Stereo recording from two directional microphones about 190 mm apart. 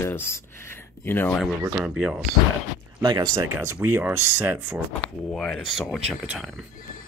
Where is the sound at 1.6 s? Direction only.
15° right (ahead or behind).